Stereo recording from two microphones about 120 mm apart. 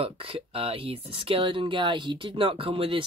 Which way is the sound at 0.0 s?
50° right (ahead or behind).